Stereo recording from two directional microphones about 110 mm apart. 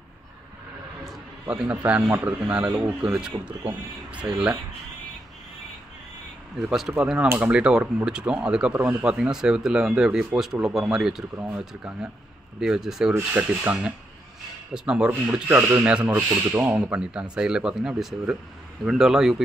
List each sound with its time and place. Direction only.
1.5 s speech: 15° right (ahead or behind)
6.6 s speech: 5° right (ahead or behind)
7.2 s speech: 15° right (ahead or behind)
11.3 s speech: 15° right (ahead or behind)
16.3 s speech: 20° right (ahead or behind); by 19.4 s 5° right (ahead or behind)